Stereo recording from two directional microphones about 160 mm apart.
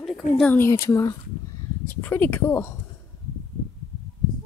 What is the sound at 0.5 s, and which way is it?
A woman's voice, 15° left (ahead or behind).